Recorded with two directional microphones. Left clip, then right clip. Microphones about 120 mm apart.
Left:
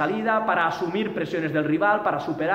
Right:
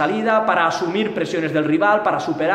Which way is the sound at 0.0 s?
20° right (ahead or behind).